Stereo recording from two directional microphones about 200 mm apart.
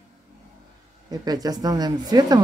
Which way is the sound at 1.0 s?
20° right (ahead or behind).